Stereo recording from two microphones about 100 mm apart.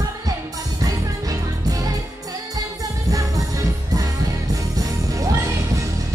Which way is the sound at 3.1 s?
35° right (ahead or behind).